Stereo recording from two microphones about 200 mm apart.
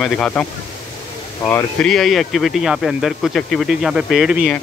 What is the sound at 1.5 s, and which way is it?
Speech, 10° left (ahead or behind).